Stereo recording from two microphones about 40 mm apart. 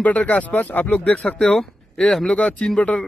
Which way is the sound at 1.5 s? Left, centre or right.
Centre.